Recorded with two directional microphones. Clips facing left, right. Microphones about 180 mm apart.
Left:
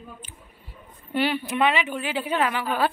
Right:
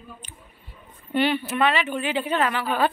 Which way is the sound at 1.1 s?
10° left (ahead or behind).